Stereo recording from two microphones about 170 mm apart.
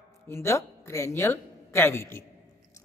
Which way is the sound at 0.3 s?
15° left (ahead or behind).